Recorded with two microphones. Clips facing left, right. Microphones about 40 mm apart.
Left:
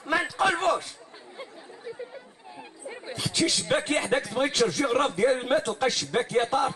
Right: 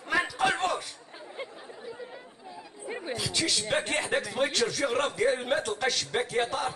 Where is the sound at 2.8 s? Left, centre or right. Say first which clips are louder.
Right 3 dB; right.